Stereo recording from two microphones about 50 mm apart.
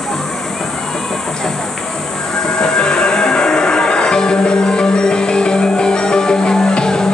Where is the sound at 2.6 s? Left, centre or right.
Centre.